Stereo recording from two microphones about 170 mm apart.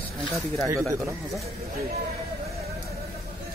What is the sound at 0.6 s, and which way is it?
Speech, 20° right (ahead or behind).